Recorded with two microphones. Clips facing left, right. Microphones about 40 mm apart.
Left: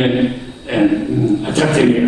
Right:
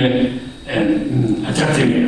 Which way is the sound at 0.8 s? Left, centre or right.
Right.